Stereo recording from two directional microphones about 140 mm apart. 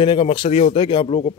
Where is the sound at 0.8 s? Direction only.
40° left (ahead or behind).